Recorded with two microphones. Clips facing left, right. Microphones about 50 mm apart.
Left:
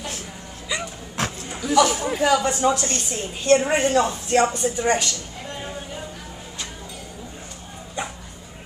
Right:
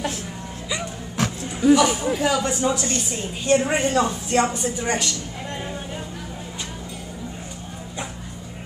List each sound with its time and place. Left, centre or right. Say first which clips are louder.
0.7 s music: left 1 dB; centre
1.6 s speech: right 2 dB; centre
2.2 s speech: left 4 dB; centre
4.3 s speech: left 2 dB; centre